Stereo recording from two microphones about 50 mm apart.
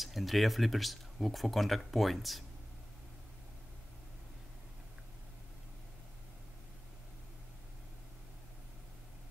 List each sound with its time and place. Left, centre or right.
0.0 s speech: centre